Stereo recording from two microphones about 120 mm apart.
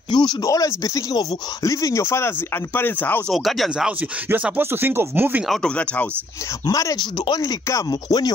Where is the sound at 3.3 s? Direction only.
Centre (ahead or behind); by 5.4 s 15° right (ahead or behind).